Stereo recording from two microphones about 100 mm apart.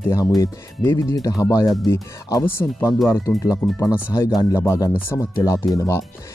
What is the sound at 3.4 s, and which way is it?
Speech, 35° left (ahead or behind).